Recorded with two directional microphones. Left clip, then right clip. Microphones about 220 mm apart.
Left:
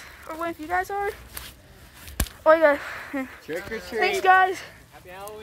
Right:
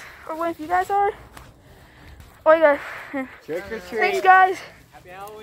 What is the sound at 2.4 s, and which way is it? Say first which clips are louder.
Speech: right 2 dB; 5° left (ahead or behind).